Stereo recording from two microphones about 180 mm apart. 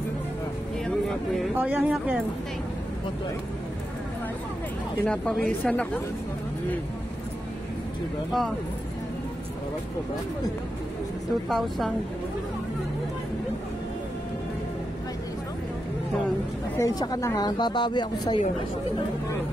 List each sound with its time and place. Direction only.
0.8 s speech: centre (ahead or behind)
5.0 s a woman's voice: 5° left (ahead or behind)
11.4 s a woman's voice: centre (ahead or behind)
16.7 s speech: 20° left (ahead or behind)